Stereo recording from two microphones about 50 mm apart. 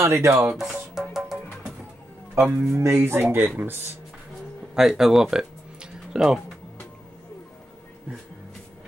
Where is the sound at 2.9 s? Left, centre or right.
Right.